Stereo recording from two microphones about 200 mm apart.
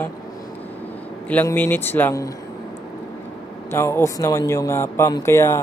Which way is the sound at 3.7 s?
10° left (ahead or behind).